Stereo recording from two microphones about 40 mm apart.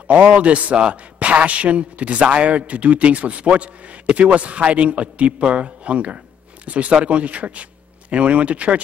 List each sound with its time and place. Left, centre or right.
0.1 s a man's voice: right